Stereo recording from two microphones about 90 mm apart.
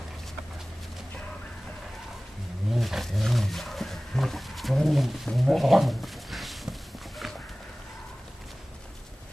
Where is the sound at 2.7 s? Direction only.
Centre (ahead or behind).